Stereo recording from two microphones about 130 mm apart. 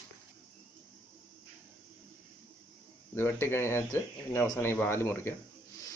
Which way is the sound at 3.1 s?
20° left (ahead or behind).